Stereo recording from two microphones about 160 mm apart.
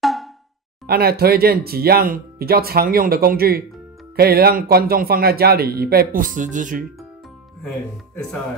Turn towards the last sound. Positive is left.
turn(degrees=-55)  # may be behind; listen again after turning